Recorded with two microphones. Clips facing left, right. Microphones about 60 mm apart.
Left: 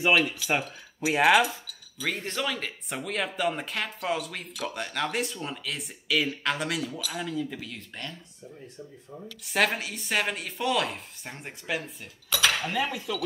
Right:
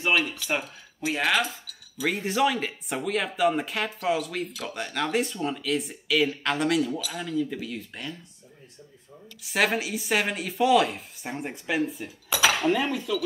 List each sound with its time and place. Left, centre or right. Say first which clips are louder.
0.1 s speech: even; centre
1.0 s speech: left 4 dB; centre
1.7 s speech: right 4 dB; centre
9.4 s speech: right 1 dB; centre